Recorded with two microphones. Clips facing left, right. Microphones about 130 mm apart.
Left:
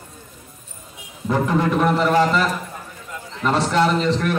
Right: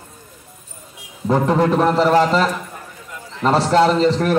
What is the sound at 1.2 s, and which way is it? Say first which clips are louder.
A man's voice: right 4 dB; 30° right (ahead or behind).